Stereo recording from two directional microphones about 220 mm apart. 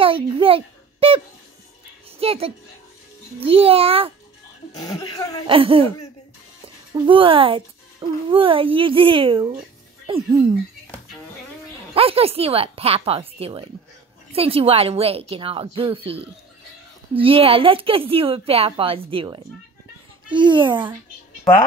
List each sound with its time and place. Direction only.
0.0 s a woman's voice: 25° right (ahead or behind)
4.7 s speech: 15° left (ahead or behind)
5.5 s a woman's voice: 25° right (ahead or behind)
6.9 s a woman's voice: 25° right (ahead or behind)
11.9 s a woman's voice: 25° right (ahead or behind)